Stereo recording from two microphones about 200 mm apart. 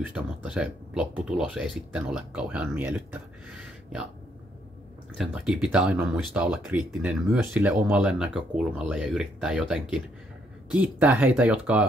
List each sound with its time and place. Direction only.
0.1 s speech: 5° right (ahead or behind)
5.1 s speech: 5° right (ahead or behind)